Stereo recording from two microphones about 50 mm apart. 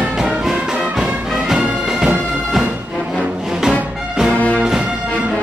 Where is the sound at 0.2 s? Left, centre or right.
Centre.